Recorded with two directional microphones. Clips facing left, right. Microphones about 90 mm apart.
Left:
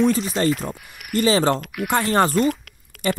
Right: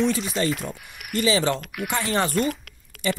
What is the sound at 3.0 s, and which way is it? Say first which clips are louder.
Speech: left 3 dB; 50° left (ahead or behind).